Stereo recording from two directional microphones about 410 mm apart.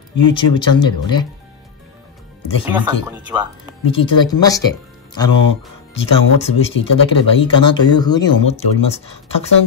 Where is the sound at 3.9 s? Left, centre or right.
Centre.